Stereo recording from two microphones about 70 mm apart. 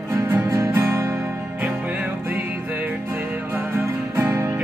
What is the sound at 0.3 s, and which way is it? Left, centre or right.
Music, right.